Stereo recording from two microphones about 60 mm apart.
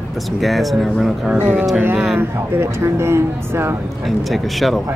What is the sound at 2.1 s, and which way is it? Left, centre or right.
Speech, right.